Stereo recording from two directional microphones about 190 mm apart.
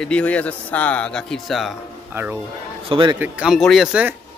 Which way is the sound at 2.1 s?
10° right (ahead or behind).